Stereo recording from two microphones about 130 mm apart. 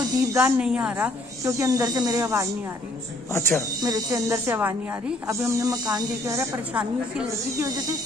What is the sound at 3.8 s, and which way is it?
Speech, 30° right (ahead or behind).